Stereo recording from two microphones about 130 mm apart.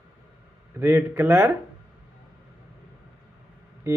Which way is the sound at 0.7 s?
20° right (ahead or behind).